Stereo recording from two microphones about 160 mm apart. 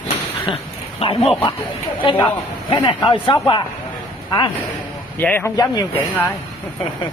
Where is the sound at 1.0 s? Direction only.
35° left (ahead or behind).